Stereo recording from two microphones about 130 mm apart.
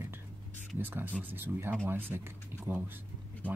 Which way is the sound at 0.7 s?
15° right (ahead or behind).